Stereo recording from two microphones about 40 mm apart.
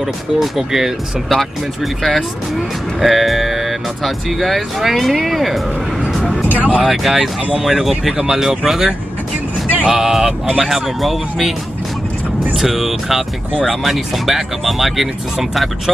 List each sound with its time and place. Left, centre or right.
0.0 s speech: centre
1.3 s speech: centre
6.5 s speech: right
6.8 s speech: centre
10.6 s speech: centre
12.5 s speech: centre